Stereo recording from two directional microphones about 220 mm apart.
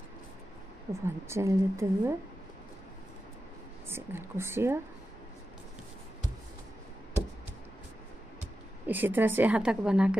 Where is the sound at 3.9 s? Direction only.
10° right (ahead or behind).